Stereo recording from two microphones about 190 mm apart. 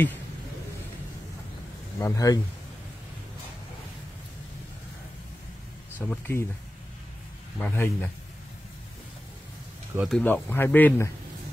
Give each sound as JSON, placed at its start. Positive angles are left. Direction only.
{"t": 2.0, "sound": "speech", "side_deg": 15}
{"t": 5.9, "sound": "speech", "side_deg": 10}
{"t": 7.5, "sound": "speech", "side_deg": 10}
{"t": 9.9, "sound": "speech", "side_deg": 0}